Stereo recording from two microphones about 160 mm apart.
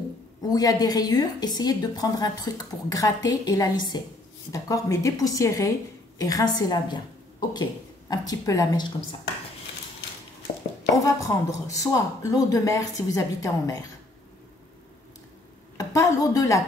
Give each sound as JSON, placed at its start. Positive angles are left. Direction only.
{"t": 0.4, "sound": "a woman's voice", "side_deg": 25}
{"t": 11.1, "sound": "a woman's voice", "side_deg": 20}
{"t": 15.8, "sound": "speech", "side_deg": 20}